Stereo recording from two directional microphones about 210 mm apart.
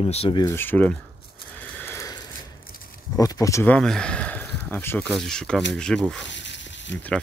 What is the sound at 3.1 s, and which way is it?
Speech, 15° left (ahead or behind).